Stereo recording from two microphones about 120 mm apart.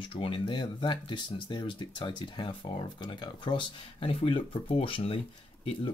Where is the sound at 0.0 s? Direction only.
45° left (ahead or behind).